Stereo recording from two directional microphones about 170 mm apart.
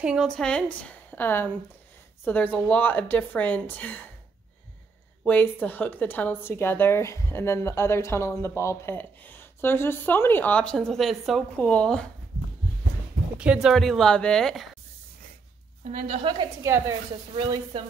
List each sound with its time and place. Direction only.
0.0 s a woman's voice: 5° right (ahead or behind)
5.2 s a woman's voice: 10° left (ahead or behind)
13.4 s speech: 5° right (ahead or behind)
15.8 s a woman's voice: 45° right (ahead or behind)
16.6 s a woman's voice: 15° right (ahead or behind)
17.4 s speech: 30° right (ahead or behind)